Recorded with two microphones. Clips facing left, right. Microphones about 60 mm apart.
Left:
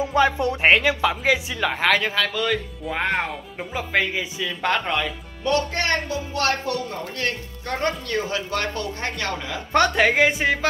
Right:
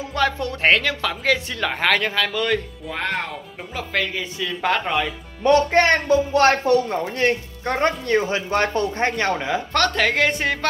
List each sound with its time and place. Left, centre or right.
0.0 s a man's voice: centre
2.9 s speech: centre
4.4 s a man's voice: centre
5.4 s speech: right
9.7 s speech: centre